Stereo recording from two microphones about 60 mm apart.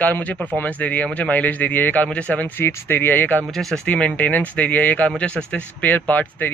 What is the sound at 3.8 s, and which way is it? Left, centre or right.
Speech, left.